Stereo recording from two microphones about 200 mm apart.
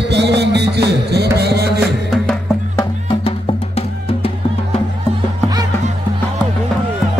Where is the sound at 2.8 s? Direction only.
30° left (ahead or behind).